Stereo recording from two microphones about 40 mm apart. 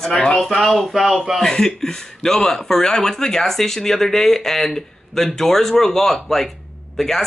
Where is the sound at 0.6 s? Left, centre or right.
Centre.